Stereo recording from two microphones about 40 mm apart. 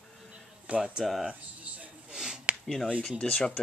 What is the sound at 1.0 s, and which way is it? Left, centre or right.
Speech, centre.